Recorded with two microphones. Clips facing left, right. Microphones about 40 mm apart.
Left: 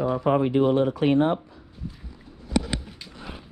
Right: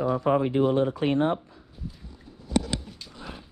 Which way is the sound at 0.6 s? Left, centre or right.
Left.